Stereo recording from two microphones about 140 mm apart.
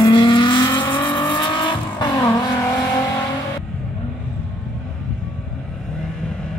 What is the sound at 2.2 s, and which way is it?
Vehicle, 20° left (ahead or behind).